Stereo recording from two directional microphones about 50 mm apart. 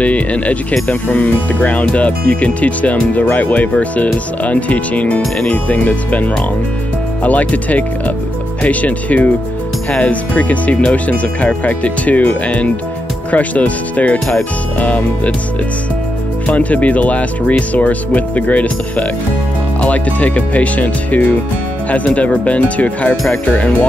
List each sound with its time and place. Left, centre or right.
0.0 s speech: left
16.4 s speech: left